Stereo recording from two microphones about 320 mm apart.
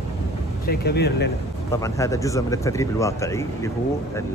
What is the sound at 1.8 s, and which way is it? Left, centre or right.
Speech, centre.